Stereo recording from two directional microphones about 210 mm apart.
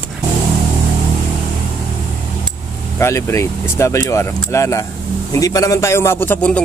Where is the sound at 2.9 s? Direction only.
15° left (ahead or behind).